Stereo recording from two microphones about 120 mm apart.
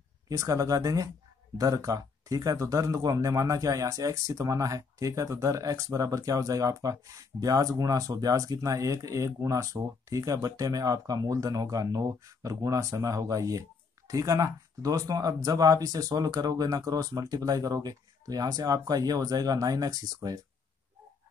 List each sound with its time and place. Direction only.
0.3 s speech: 25° right (ahead or behind)